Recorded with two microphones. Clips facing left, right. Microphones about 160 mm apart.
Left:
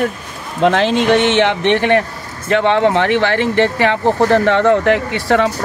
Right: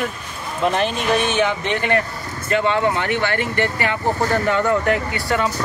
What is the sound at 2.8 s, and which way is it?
Speech, 85° left.